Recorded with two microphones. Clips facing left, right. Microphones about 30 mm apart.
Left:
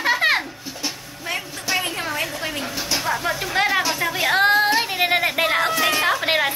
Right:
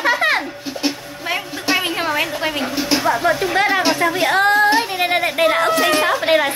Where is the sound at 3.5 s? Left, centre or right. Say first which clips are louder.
Right 4 dB; centre.